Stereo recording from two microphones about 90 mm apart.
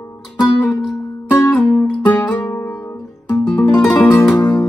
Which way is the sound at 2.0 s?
15° left (ahead or behind).